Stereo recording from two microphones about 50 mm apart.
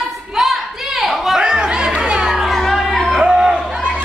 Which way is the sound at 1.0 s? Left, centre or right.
Centre.